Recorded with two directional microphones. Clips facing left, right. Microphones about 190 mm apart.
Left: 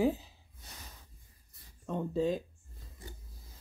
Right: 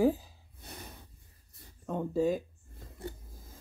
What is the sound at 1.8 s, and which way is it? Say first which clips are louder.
Speech: right 2 dB; 10° right (ahead or behind).